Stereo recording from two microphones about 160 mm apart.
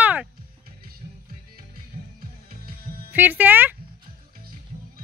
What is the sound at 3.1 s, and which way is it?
Speech, 10° right (ahead or behind).